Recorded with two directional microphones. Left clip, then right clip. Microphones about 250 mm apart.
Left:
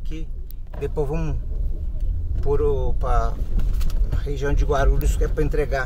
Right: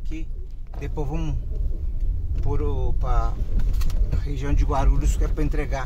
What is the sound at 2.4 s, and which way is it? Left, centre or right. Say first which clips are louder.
Speech: left 9 dB; left.